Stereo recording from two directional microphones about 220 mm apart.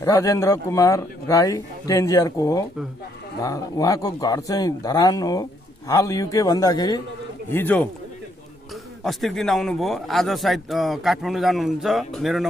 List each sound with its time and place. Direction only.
0.0 s speech: 15° left (ahead or behind)
9.0 s a man's voice: centre (ahead or behind)